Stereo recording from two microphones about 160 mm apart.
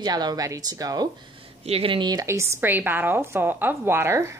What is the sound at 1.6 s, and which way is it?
A woman's voice, 35° right (ahead or behind).